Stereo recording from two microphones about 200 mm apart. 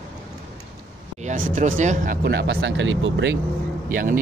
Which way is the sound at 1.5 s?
40° right (ahead or behind).